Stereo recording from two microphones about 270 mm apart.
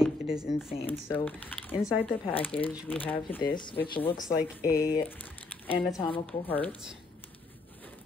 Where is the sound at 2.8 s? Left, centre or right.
Centre.